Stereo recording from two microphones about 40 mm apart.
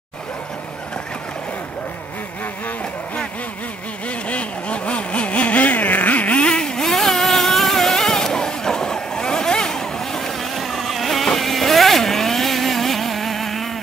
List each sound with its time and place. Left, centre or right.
4.3 s a sound: left
6.4 s vehicle: centre
10.5 s vehicle: centre